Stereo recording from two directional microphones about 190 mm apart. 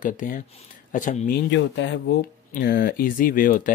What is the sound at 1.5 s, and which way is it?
Speech, 70° left (ahead or behind).